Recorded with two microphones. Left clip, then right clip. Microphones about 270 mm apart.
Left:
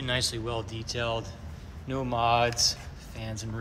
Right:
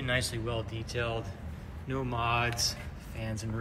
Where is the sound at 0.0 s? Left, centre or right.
Centre.